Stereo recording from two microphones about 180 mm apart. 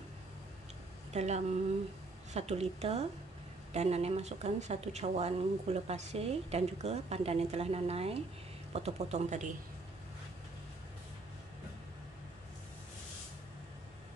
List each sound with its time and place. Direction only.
1.1 s speech: 40° right (ahead or behind)